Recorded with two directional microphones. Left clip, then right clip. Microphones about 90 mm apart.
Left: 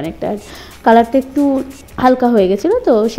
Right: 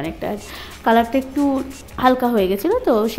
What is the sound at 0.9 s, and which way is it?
Speech, 45° left (ahead or behind).